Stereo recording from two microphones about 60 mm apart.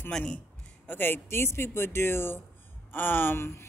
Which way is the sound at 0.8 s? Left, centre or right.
Left.